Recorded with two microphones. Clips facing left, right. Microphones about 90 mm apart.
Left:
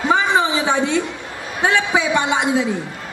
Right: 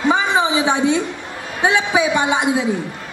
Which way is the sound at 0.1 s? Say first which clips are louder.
Left 1 dB; 20° right (ahead or behind).